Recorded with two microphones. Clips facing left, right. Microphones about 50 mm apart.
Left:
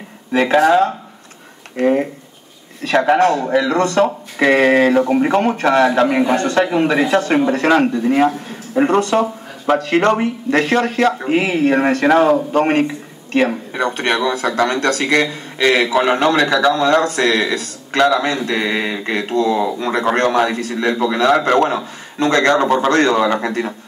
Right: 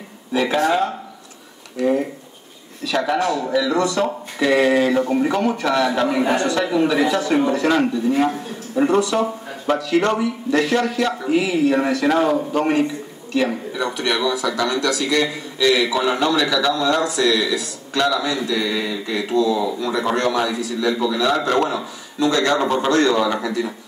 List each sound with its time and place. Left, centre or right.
0.3 s speech: left